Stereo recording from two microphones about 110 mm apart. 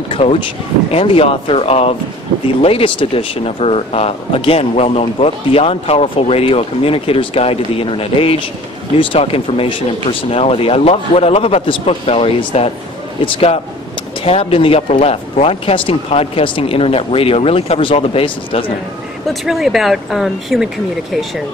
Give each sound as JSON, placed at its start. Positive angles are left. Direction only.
{"t": 0.1, "sound": "speech", "side_deg": 60}
{"t": 19.4, "sound": "speech", "side_deg": -5}